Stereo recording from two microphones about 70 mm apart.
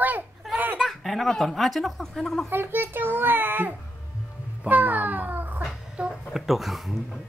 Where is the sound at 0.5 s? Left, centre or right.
Right.